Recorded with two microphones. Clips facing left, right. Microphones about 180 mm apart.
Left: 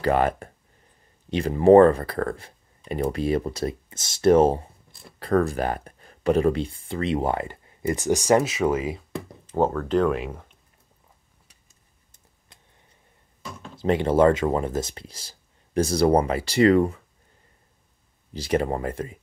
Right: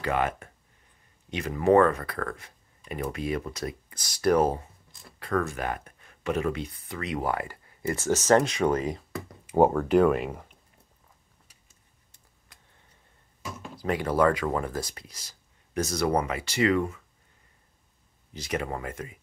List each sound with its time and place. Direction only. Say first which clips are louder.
0.0 s speech: left 6 dB; 35° left (ahead or behind); by 9.0 s 5° left (ahead or behind)
9.5 s speech: right 2 dB; 15° right (ahead or behind)
13.4 s a sound: even; 10° right (ahead or behind)
13.7 s speech: left 6 dB; 25° left (ahead or behind)
18.3 s speech: left 7 dB; 30° left (ahead or behind)